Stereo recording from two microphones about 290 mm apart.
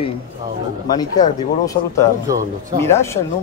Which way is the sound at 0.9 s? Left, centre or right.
Centre.